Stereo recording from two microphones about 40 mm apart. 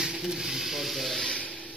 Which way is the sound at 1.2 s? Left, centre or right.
Left.